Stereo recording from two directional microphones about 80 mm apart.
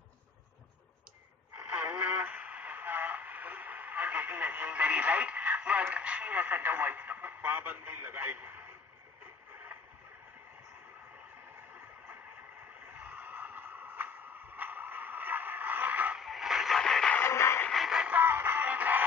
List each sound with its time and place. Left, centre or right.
2.1 s radio: centre
12.9 s a sound: right
16.2 s a sound: centre
17.2 s music: left
17.6 s music: centre
18.0 s music: right